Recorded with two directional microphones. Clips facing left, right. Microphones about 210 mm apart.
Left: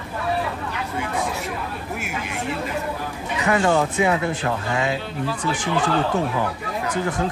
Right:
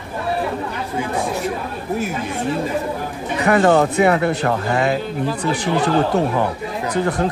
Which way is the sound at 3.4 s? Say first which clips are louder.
Right 5 dB; 60° right (ahead or behind).